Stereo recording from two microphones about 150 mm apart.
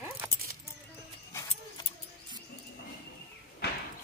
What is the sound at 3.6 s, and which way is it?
Vehicle, 90° left.